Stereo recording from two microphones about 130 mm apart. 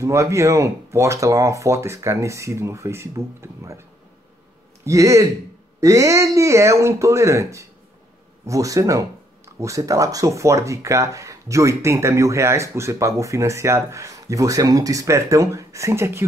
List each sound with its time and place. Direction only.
0.0 s speech: 25° right (ahead or behind)
4.8 s speech: 25° right (ahead or behind)